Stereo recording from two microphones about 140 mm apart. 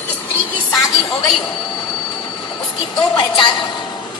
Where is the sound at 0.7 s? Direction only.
25° left (ahead or behind).